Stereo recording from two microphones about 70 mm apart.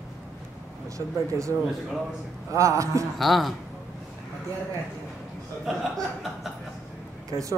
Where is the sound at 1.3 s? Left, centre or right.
Right.